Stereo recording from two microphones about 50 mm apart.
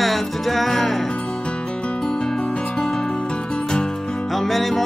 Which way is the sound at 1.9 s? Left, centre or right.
Centre.